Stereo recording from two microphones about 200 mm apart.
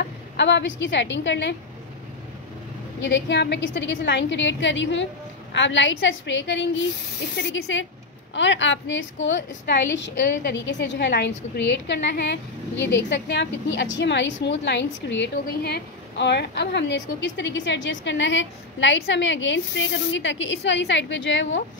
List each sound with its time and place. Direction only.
0.4 s a woman's voice: 60° left (ahead or behind)
3.0 s a woman's voice: 60° left (ahead or behind)